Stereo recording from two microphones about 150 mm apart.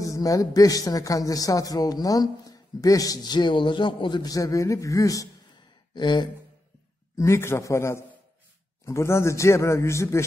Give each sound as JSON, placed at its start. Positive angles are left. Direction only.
{"t": 0.0, "sound": "a man's voice", "side_deg": 20}
{"t": 7.2, "sound": "a man's voice", "side_deg": 20}